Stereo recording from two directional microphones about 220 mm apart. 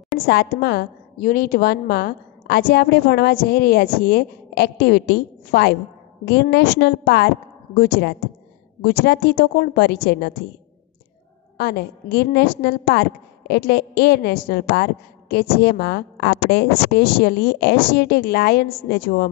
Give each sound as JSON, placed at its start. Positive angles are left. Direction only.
{"t": 0.3, "sound": "a woman's voice", "side_deg": 45}
{"t": 11.5, "sound": "a woman's voice", "side_deg": 45}